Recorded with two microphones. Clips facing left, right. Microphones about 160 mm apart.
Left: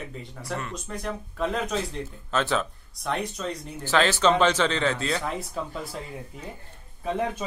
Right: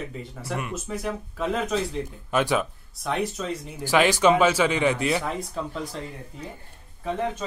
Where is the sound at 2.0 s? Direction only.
10° right (ahead or behind).